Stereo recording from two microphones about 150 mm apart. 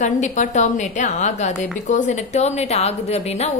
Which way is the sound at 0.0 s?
55° left (ahead or behind).